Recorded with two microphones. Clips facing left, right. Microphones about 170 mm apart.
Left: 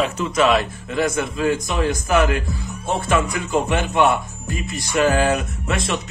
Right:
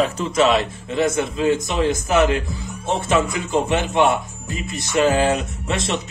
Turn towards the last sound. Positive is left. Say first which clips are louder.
# even
turn(degrees=-25)  # may be behind; listen again after turning